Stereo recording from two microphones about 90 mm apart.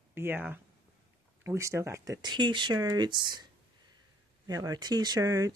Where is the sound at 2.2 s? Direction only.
60° right (ahead or behind).